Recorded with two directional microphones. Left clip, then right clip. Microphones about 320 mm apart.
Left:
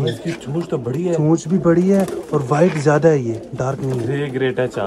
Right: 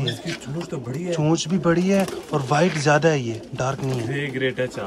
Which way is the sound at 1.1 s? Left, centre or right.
Centre.